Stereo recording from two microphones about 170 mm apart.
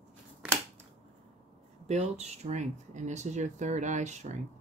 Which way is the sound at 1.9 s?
40° right (ahead or behind).